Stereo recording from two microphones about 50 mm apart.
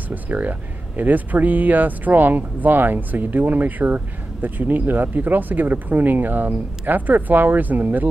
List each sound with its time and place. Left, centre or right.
0.1 s speech: right